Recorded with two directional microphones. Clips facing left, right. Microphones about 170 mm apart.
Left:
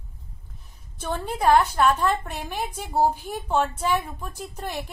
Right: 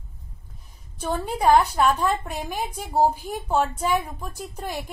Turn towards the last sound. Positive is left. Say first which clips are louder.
# right 1 dB
turn(degrees=-10)  # may be behind; listen again after turning